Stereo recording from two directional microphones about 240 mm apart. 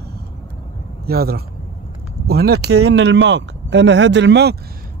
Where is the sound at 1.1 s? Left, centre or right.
Right.